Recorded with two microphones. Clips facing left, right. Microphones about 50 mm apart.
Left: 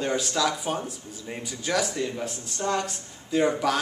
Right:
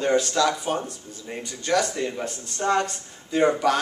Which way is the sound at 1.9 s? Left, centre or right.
Centre.